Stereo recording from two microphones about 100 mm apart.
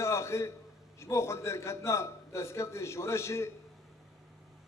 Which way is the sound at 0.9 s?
30° left (ahead or behind).